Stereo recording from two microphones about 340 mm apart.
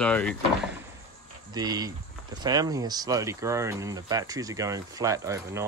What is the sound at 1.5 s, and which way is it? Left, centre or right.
Speech, centre.